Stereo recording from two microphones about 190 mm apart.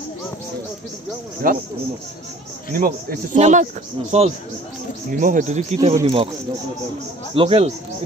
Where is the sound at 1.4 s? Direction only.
50° right (ahead or behind).